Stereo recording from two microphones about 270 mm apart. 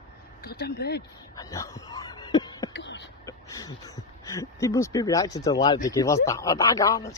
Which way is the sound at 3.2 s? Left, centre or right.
Centre.